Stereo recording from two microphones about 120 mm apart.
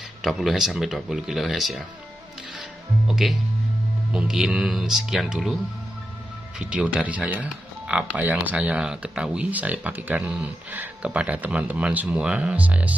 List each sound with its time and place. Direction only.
0.2 s speech: centre (ahead or behind)
3.1 s speech: 5° right (ahead or behind)
6.6 s speech: 10° right (ahead or behind)